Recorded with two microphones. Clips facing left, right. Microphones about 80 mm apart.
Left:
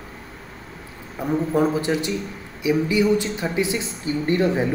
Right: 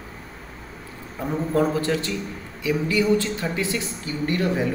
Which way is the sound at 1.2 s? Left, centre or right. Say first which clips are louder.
Left 2 dB; centre.